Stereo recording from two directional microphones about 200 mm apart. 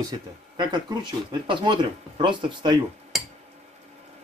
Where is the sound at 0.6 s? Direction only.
20° right (ahead or behind).